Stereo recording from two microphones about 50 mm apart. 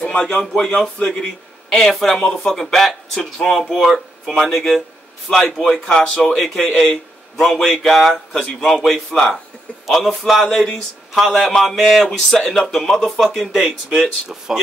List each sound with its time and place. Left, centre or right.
0.0 s a man's voice: centre
7.7 s a man's voice: centre
8.8 s a man's voice: centre